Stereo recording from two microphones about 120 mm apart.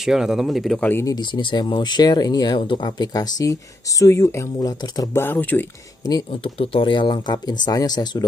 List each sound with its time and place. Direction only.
0.0 s speech: 5° right (ahead or behind)
0.7 s speech: 15° left (ahead or behind)
1.0 s speech: 40° left (ahead or behind)
5.1 s speech: 15° left (ahead or behind)
6.3 s speech: 50° left (ahead or behind); by 8.2 s 35° left (ahead or behind)